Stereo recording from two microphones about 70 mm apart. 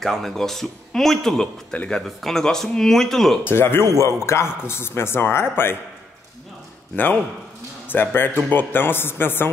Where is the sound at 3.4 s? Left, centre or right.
Left.